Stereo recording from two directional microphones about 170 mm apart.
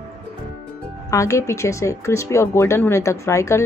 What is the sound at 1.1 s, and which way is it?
Speech, 20° left (ahead or behind).